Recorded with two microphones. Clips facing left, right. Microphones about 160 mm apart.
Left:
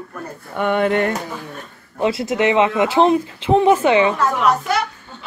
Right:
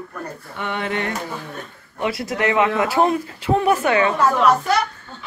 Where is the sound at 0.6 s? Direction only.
50° left (ahead or behind).